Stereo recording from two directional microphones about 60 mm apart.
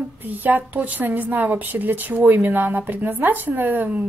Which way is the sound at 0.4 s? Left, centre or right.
Right.